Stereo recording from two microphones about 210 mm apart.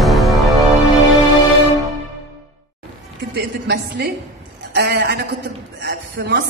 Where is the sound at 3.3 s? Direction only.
50° right (ahead or behind).